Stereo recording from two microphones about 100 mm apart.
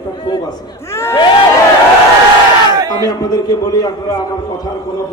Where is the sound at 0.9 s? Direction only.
25° left (ahead or behind).